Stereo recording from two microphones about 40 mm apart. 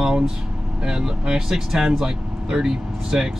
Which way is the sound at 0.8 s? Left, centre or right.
Centre.